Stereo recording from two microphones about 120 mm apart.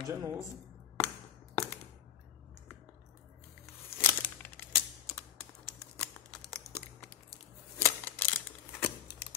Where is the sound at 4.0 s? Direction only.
15° left (ahead or behind).